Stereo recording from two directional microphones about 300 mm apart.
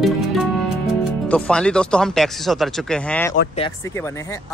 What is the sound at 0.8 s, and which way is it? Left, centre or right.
Speech, centre.